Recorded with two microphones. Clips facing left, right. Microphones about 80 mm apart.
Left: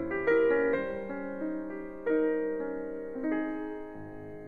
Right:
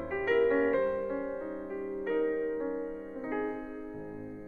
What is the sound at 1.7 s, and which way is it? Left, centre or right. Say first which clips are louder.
Music: left 1 dB; left.